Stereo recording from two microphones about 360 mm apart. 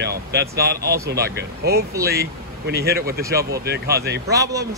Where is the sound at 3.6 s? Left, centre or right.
Right.